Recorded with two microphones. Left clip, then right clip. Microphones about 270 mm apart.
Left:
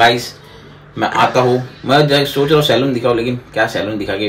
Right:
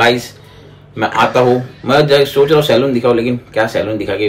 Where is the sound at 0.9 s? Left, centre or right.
Centre.